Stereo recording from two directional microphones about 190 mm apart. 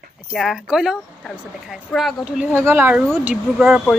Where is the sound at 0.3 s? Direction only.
Centre (ahead or behind).